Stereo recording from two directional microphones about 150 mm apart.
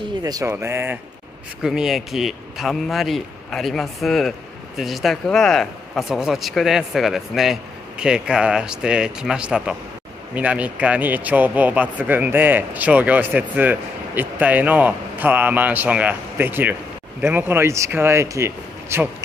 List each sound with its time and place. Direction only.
0.2 s speech: 25° right (ahead or behind)
1.6 s speech: centre (ahead or behind)